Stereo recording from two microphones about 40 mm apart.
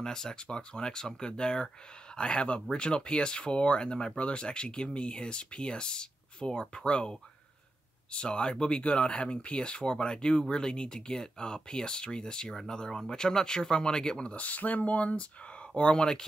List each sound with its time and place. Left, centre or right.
0.0 s speech: centre
14.3 s speech: left
15.7 s speech: left